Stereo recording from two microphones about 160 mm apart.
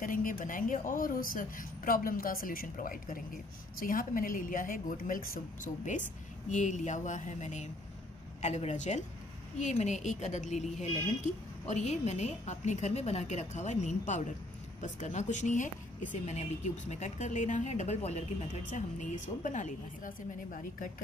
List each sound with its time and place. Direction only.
0.0 s a woman's voice: 60° left (ahead or behind)